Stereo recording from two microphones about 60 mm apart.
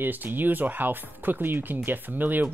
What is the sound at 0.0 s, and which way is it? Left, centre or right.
Speech, right.